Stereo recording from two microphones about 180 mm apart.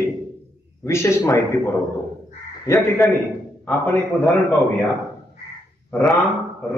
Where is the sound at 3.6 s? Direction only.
10° left (ahead or behind).